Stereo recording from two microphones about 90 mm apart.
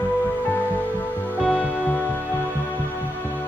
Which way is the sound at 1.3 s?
15° left (ahead or behind).